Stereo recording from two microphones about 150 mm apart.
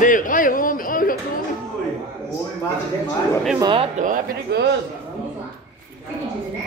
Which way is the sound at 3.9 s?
60° right (ahead or behind).